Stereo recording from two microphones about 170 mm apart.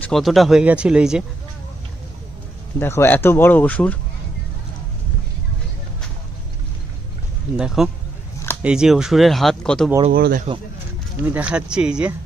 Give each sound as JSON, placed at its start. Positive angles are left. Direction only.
{"t": 0.0, "sound": "speech", "side_deg": 0}
{"t": 2.8, "sound": "speech", "side_deg": 15}
{"t": 7.5, "sound": "speech", "side_deg": -5}
{"t": 10.1, "sound": "speech", "side_deg": -65}
{"t": 11.2, "sound": "speech", "side_deg": -5}